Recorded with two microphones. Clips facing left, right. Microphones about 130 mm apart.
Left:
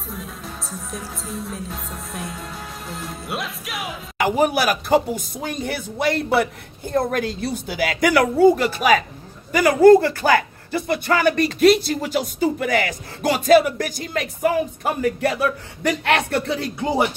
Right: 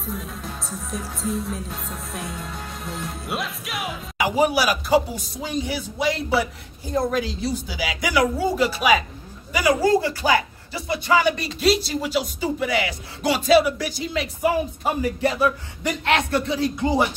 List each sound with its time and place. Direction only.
0.0 s music: centre (ahead or behind)
4.2 s speech: 55° left (ahead or behind)
15.0 s speech: 60° left (ahead or behind)